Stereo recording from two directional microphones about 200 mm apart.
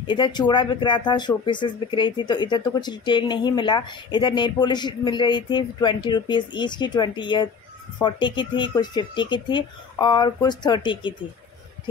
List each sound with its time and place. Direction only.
0.0 s speech: 25° left (ahead or behind)